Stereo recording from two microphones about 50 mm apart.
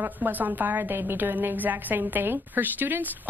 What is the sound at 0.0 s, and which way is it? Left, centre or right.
Speech, right.